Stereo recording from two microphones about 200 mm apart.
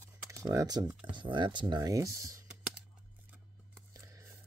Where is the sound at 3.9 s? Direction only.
15° right (ahead or behind).